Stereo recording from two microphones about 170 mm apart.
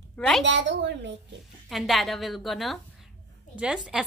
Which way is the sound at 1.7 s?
Centre (ahead or behind).